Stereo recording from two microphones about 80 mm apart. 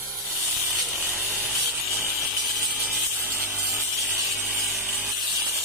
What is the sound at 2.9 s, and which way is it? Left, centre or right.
Wood, centre.